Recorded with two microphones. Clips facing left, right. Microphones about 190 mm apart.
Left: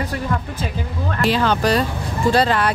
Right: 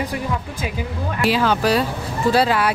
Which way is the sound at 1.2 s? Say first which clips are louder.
Even; 5° right (ahead or behind).